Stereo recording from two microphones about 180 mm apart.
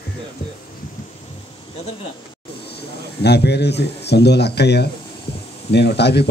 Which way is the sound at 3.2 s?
65° left (ahead or behind).